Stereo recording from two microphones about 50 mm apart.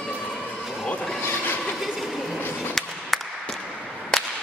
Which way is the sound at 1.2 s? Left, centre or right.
Left.